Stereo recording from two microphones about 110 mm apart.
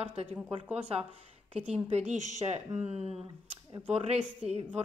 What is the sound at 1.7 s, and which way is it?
A woman's voice, 85° right.